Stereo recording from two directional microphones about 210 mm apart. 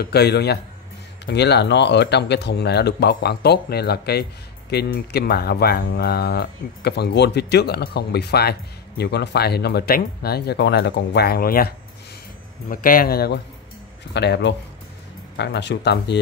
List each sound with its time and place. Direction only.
0.0 s speech: 50° left (ahead or behind)